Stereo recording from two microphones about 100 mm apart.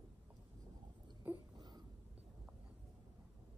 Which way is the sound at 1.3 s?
20° right (ahead or behind).